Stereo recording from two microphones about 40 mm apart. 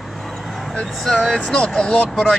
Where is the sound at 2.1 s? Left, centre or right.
Centre.